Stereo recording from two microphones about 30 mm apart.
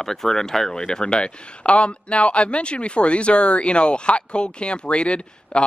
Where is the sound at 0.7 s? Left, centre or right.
Left.